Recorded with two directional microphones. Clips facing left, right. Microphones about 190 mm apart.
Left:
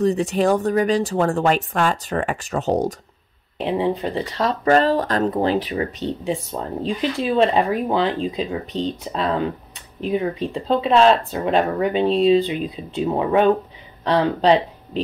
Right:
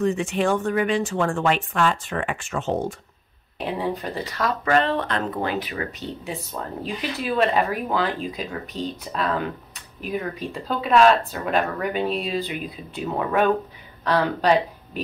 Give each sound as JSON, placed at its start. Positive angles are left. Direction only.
{"t": 0.0, "sound": "speech", "side_deg": 35}
{"t": 3.6, "sound": "speech", "side_deg": 20}